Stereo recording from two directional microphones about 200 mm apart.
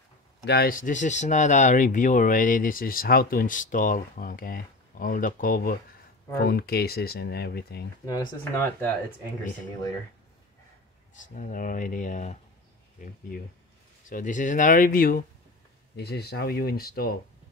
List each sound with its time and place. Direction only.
0.5 s speech: 50° left (ahead or behind)
8.0 s speech: 15° left (ahead or behind)
11.1 s speech: 40° left (ahead or behind)
14.0 s speech: 40° left (ahead or behind)